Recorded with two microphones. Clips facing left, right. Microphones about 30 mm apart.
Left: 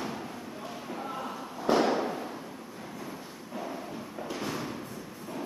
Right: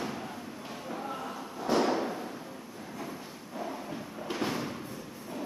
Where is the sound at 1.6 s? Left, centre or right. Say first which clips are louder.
Left 2 dB; centre.